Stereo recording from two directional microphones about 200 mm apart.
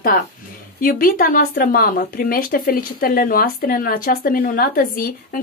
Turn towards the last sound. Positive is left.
turn(degrees=45)  # may be behind; listen again after turning